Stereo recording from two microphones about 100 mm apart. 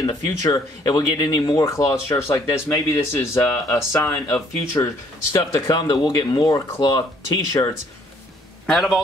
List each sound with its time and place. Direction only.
0.0 s speech: 35° left (ahead or behind)
5.8 s speech: 45° left (ahead or behind)
6.4 s speech: 35° left (ahead or behind)
8.6 s a man's voice: centre (ahead or behind)